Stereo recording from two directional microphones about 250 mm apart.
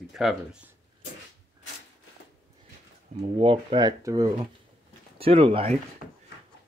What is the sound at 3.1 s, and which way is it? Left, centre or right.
Speech, right.